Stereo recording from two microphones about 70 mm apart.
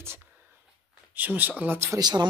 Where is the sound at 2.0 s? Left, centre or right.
Right.